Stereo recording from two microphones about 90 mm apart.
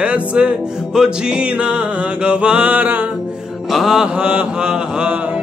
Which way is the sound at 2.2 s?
15° right (ahead or behind).